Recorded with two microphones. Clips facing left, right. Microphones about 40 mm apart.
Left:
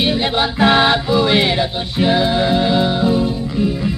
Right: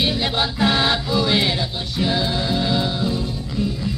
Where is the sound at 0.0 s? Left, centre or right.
Left.